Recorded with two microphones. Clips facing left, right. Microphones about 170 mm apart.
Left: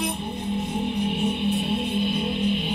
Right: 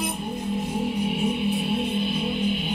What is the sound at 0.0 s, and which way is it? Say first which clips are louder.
Music: even; centre (ahead or behind).